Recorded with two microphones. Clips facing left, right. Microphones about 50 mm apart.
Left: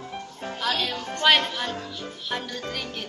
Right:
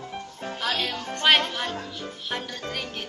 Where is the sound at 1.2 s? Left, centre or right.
Right.